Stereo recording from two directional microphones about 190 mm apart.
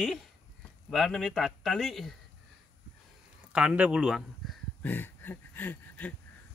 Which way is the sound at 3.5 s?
5° right (ahead or behind).